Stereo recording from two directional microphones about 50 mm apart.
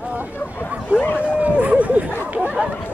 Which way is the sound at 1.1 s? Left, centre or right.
Right.